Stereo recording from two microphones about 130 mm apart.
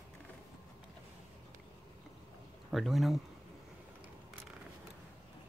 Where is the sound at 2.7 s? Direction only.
Centre (ahead or behind).